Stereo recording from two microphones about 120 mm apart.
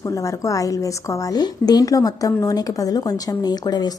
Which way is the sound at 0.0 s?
25° left (ahead or behind).